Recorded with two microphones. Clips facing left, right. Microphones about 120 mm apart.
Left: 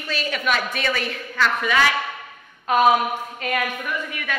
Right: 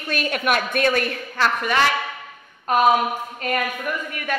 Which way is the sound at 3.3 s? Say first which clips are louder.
Right 1 dB; 40° right (ahead or behind).